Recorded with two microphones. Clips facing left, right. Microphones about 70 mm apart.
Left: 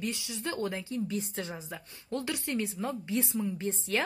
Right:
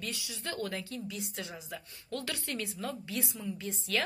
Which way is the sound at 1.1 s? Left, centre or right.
Left.